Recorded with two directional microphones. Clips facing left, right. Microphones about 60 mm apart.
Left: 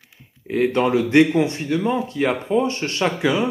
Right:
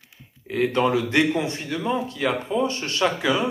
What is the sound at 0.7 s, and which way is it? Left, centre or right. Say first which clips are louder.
Speech: left 5 dB; left.